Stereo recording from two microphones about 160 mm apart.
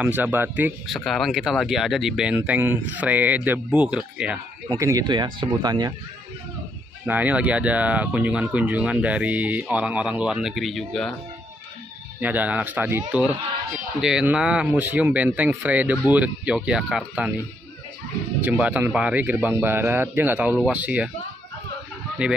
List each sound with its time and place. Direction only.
0.0 s speech: 10° right (ahead or behind)
0.9 s speech: centre (ahead or behind)
4.6 s speech: 20° right (ahead or behind)
7.1 s speech: 10° right (ahead or behind)
12.2 s speech: 10° right (ahead or behind)
18.4 s speech: 10° right (ahead or behind)